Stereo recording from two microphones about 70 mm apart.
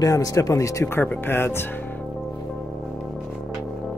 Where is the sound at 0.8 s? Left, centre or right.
Left.